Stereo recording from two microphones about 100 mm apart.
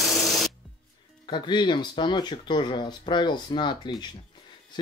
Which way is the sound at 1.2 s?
50° left (ahead or behind).